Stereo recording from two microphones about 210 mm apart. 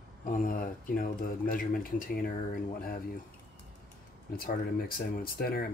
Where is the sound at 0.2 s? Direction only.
40° left (ahead or behind).